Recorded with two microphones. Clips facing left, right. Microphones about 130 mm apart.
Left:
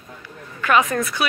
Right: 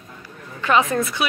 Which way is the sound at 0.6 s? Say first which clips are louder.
Even; 25° right (ahead or behind).